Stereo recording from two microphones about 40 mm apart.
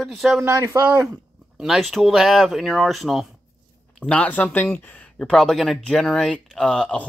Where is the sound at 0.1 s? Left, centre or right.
Centre.